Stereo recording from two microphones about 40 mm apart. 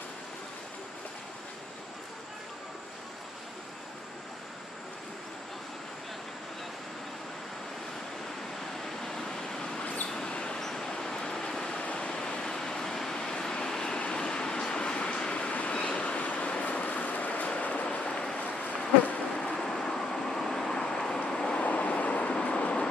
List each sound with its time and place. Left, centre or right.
9.0 s a sound: centre
10.0 s vehicle: centre
11.8 s waterfall: left
12.4 s vehicle: centre
13.9 s vehicle: left
14.2 s vehicle: centre; by 17.5 s left
17.6 s train: left
17.8 s vehicle: left
18.4 s insect: left
19.3 s vehicle: centre
21.5 s vehicle: left